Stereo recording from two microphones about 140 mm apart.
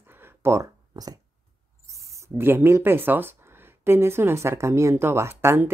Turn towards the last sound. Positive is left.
turn(degrees=-20)  # may be behind; listen again after turning